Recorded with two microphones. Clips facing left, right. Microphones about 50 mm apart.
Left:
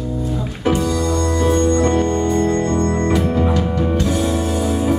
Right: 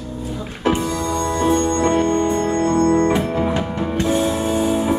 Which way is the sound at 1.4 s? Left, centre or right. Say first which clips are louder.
Left 1 dB; right.